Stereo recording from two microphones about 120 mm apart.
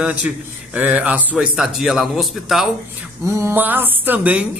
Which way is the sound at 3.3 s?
20° right (ahead or behind).